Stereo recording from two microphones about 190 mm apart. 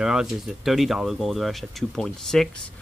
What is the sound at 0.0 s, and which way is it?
Speech, 5° right (ahead or behind).